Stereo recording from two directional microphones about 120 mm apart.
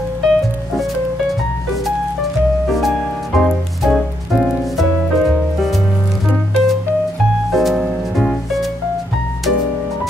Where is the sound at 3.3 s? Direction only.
Centre (ahead or behind).